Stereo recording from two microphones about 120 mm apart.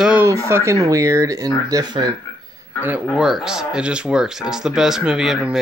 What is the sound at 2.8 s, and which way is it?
Speech, 15° right (ahead or behind).